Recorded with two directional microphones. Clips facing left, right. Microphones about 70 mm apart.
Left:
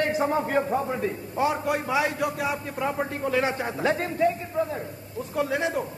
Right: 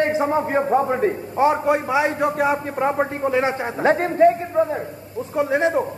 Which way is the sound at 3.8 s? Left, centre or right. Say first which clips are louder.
Right 9 dB; right.